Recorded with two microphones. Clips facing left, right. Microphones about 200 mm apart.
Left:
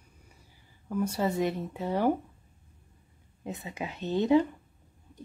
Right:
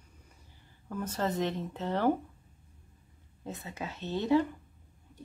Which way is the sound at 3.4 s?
15° left (ahead or behind).